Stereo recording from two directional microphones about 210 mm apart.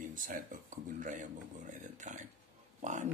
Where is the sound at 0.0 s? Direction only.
40° right (ahead or behind).